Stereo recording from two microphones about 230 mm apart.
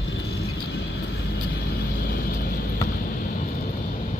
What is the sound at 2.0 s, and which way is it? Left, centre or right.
Vehicle, left.